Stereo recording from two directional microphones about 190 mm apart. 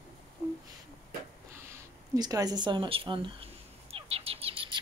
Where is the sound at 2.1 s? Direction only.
20° right (ahead or behind).